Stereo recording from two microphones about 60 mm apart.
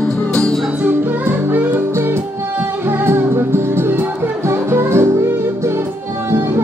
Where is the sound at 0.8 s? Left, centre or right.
Right.